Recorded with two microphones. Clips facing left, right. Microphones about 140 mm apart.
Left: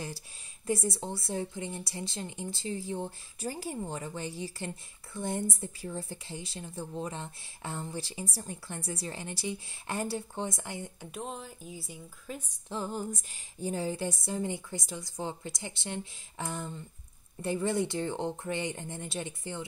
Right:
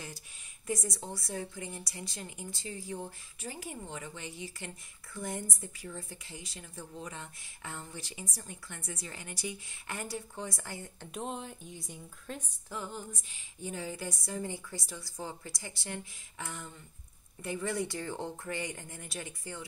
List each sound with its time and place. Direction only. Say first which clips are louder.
0.7 s a woman's voice: left 5 dB; 30° left (ahead or behind)
11.1 s a woman's voice: right 4 dB; centre (ahead or behind)
12.6 s a woman's voice: left 7 dB; 35° left (ahead or behind)